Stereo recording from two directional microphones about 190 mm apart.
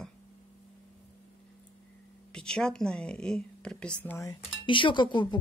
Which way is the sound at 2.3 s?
5° left (ahead or behind).